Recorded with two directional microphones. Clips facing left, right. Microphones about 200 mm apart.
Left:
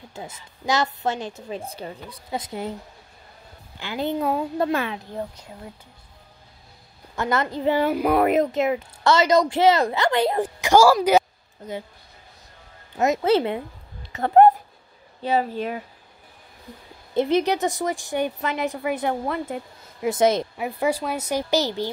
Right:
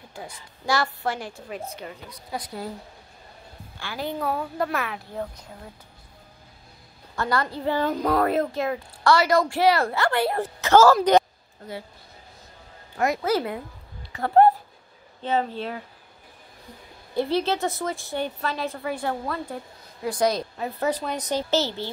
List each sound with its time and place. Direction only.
0.1 s a woman's voice: 20° left (ahead or behind)
3.8 s a woman's voice: 20° left (ahead or behind)
7.2 s a woman's voice: 20° left (ahead or behind)
12.9 s a woman's voice: 20° left (ahead or behind)
17.1 s a woman's voice: 20° left (ahead or behind)
20.5 s a woman's voice: 10° left (ahead or behind)